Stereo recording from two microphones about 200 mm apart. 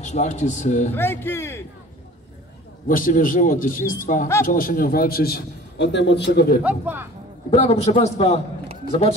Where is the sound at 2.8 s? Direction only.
40° left (ahead or behind).